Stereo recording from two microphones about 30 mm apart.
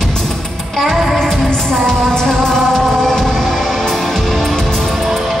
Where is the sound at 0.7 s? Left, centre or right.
Centre.